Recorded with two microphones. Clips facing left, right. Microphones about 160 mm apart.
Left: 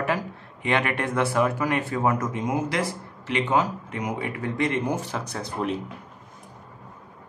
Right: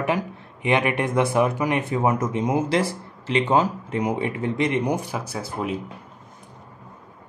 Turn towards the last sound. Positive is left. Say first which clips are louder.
# even
turn(degrees=-5)  # may be behind; listen again after turning